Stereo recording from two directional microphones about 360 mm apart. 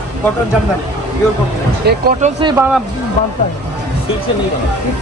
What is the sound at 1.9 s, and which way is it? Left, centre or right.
Speech, right.